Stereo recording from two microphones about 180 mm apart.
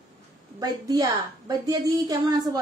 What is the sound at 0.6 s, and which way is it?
Speech, 20° right (ahead or behind).